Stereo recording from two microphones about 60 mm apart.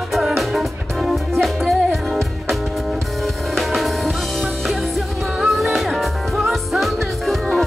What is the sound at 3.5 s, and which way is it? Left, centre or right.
Music, centre.